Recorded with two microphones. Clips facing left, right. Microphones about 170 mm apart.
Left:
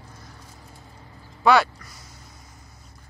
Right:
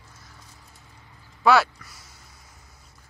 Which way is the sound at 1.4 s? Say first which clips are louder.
Left 1 dB; 5° right (ahead or behind).